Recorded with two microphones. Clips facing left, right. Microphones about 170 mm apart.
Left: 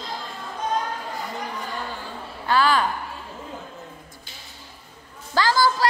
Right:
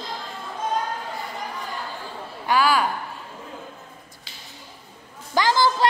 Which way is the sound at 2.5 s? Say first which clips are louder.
Even; 10° right (ahead or behind).